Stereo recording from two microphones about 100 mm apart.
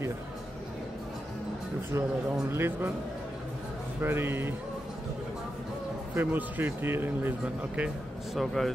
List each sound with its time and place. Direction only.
2.5 s speech: 25° right (ahead or behind)
4.0 s speech: 20° right (ahead or behind)
6.1 s speech: 20° right (ahead or behind)
8.4 s speech: centre (ahead or behind)